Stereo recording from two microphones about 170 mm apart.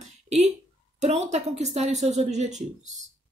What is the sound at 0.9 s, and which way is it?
Speech, 40° right (ahead or behind).